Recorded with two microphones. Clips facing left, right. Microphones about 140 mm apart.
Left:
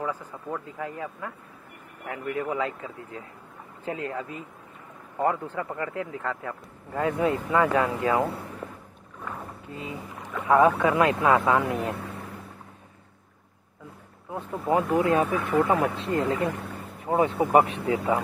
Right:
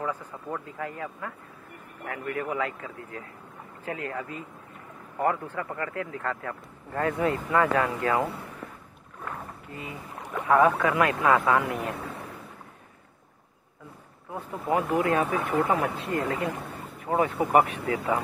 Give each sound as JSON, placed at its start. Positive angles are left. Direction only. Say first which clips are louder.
{"t": 0.3, "sound": "speech", "louder": "left 1 dB", "side_deg": 10}
{"t": 9.7, "sound": "speech", "louder": "left 4 dB", "side_deg": 20}
{"t": 10.1, "sound": "boat", "louder": "right 1 dB", "side_deg": -20}
{"t": 10.4, "sound": "speech", "louder": "left 1 dB", "side_deg": 20}
{"t": 14.3, "sound": "speech", "louder": "left 2 dB", "side_deg": 20}